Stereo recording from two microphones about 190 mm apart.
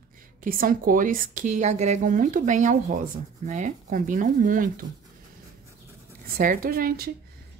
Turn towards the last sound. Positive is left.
turn(degrees=-50)  # may be behind; listen again after turning